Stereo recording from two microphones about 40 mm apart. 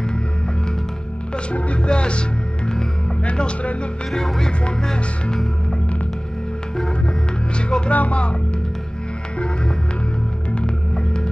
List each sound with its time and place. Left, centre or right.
1.3 s music: left
3.1 s speech: left
4.1 s music: centre
4.5 s music: left
7.5 s music: left
7.9 s speech: left